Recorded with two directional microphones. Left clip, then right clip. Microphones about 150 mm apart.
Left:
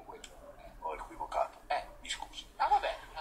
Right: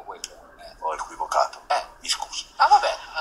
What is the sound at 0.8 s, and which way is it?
Tick-tock, 40° right (ahead or behind).